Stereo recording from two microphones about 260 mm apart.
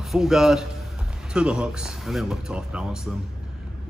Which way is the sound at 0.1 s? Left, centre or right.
Centre.